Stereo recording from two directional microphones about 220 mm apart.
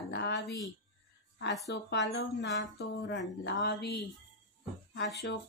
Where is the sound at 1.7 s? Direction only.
55° left (ahead or behind).